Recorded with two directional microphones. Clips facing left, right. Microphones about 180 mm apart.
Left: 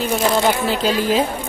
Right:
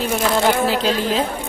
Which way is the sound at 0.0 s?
Centre (ahead or behind).